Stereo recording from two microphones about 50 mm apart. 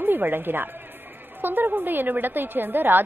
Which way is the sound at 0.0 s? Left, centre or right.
Right.